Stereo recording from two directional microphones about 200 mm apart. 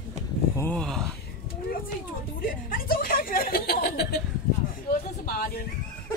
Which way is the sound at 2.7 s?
45° left (ahead or behind).